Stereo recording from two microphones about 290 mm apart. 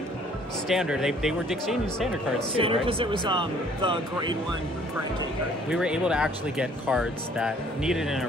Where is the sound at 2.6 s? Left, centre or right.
Centre.